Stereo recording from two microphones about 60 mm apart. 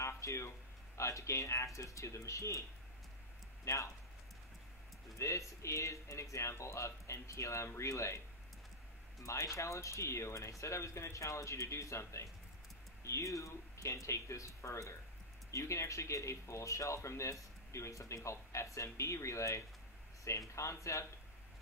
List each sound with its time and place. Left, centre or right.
0.0 s a sound: left
0.9 s speech: left
3.6 s speech: left
5.2 s speech: left
9.2 s speech: left